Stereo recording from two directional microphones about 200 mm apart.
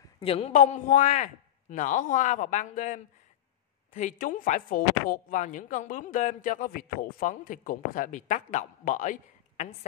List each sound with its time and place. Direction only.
0.2 s speech: 30° left (ahead or behind)